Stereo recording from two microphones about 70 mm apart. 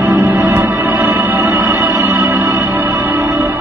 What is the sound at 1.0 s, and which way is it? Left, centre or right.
Music, right.